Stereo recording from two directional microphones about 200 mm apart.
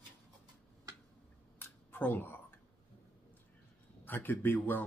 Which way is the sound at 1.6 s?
10° left (ahead or behind).